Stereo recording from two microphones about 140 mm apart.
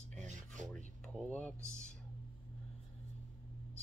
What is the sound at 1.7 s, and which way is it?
Speech, 55° left (ahead or behind).